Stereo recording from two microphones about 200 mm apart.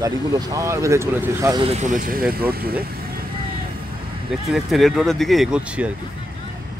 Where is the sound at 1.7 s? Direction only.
35° right (ahead or behind).